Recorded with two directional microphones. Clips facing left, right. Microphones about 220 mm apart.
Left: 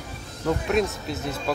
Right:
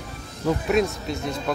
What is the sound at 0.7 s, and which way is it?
Speech, centre (ahead or behind).